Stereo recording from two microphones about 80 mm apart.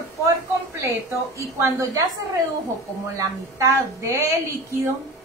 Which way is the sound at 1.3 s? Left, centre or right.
Right.